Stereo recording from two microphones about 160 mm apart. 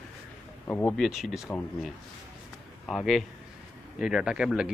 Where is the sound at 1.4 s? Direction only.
10° left (ahead or behind).